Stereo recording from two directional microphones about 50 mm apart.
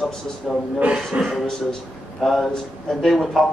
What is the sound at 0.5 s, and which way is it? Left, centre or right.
Speech, centre.